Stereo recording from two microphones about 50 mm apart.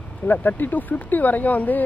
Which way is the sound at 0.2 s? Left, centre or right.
Left.